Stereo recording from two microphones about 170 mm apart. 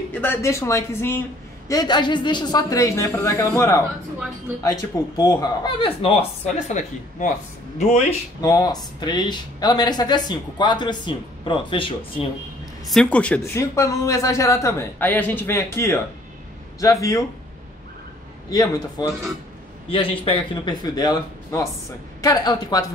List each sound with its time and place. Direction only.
0.1 s speech: 10° left (ahead or behind)
1.7 s speech: 25° left (ahead or behind)
8.4 s speech: 20° left (ahead or behind)
12.8 s speech: 5° left (ahead or behind); by 17.2 s 20° left (ahead or behind)
18.5 s speech: 20° left (ahead or behind)